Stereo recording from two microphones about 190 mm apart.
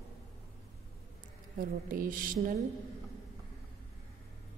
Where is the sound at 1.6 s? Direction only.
45° right (ahead or behind).